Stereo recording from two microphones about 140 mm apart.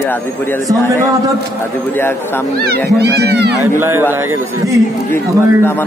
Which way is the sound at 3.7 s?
15° right (ahead or behind).